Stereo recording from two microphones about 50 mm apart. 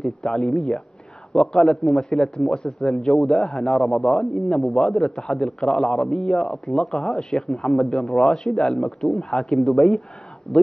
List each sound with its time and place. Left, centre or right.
0.2 s a man's voice: centre
10.5 s speech: centre